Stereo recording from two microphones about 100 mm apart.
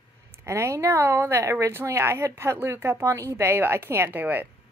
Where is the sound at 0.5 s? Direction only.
30° right (ahead or behind).